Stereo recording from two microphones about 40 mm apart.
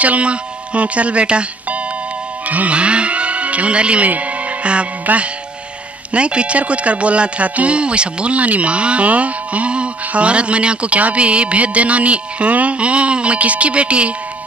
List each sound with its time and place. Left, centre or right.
0.0 s speech: right
2.4 s speech: right
4.1 s music: right
5.0 s speech: right